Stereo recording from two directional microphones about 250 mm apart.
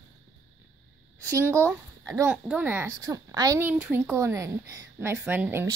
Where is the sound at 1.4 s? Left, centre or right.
Centre.